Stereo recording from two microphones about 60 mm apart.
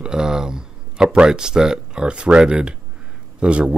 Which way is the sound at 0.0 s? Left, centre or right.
Centre.